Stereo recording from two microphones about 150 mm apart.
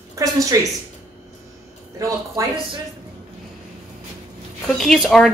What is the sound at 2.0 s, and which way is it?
Speech, 20° right (ahead or behind).